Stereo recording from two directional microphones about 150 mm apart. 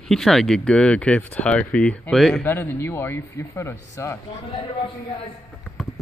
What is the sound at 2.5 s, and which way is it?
Speech, 15° left (ahead or behind).